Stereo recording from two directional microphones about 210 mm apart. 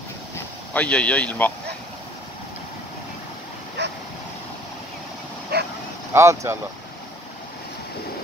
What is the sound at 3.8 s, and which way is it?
Dog, 55° right (ahead or behind).